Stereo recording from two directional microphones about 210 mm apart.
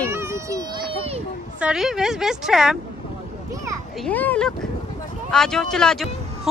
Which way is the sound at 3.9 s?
5° left (ahead or behind).